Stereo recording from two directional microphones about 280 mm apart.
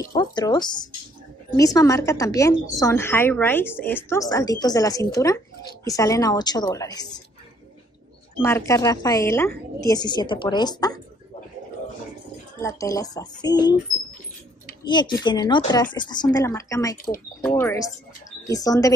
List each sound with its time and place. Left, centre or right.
0.1 s a woman's voice: centre
8.4 s a woman's voice: centre
12.5 s a woman's voice: centre
14.9 s a woman's voice: centre